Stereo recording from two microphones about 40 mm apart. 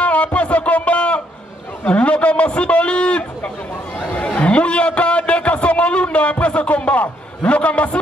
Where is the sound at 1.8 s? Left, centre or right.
Left.